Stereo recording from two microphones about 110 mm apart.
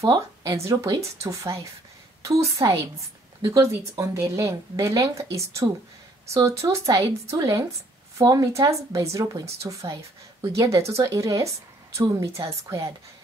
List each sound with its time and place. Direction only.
0.0 s speech: 35° right (ahead or behind)